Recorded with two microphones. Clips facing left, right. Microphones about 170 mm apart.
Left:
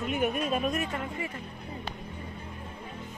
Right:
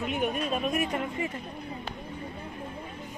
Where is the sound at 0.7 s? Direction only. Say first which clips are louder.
Right 3 dB; 20° right (ahead or behind).